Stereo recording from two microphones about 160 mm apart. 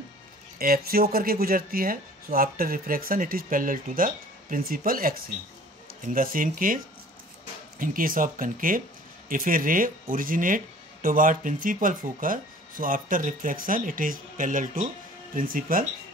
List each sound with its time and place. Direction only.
0.6 s speech: 70° right (ahead or behind)
7.8 s speech: 60° right (ahead or behind)